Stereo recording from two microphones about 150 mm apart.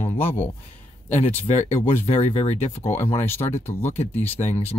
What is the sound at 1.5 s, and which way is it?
Speech, 50° left (ahead or behind).